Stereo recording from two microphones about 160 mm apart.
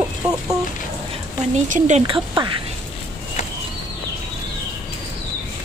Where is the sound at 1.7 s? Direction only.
45° right (ahead or behind).